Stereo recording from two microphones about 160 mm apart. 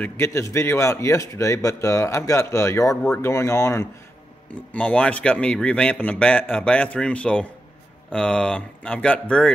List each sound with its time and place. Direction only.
0.0 s speech: 15° left (ahead or behind)